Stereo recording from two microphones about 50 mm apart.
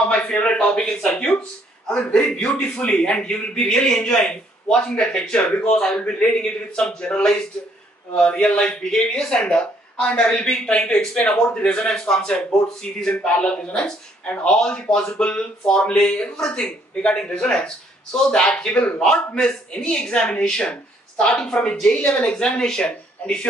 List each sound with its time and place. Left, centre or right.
0.1 s a man's voice: centre
21.9 s a man's voice: left